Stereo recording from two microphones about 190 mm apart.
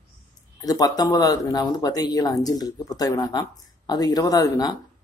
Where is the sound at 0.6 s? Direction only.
20° left (ahead or behind).